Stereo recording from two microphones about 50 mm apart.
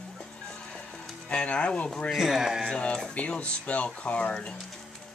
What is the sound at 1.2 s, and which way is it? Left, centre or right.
Speech, left.